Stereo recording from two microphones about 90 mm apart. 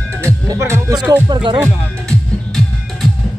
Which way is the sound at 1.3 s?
65° right (ahead or behind).